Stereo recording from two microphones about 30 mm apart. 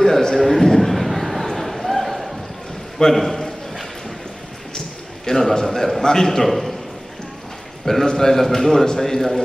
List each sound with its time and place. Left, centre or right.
0.0 s a man's voice: centre
0.4 s a sound: centre
3.0 s a man's voice: centre
4.7 s a sound: centre
5.5 s a man's voice: centre
6.4 s a man's voice: centre
7.8 s a man's voice: centre